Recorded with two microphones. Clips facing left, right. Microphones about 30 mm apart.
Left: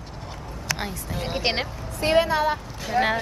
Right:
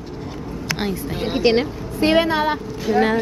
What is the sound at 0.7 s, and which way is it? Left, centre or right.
Speech, right.